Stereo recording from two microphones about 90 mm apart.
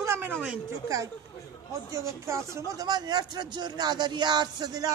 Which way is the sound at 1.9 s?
35° right (ahead or behind).